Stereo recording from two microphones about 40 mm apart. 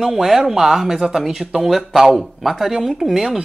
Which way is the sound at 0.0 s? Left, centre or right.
Centre.